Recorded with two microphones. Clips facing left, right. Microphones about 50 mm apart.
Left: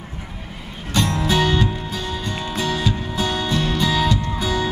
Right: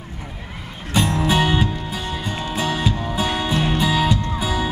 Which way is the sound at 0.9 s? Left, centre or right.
Centre.